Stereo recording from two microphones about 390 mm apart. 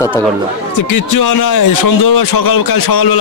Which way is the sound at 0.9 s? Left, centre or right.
Left.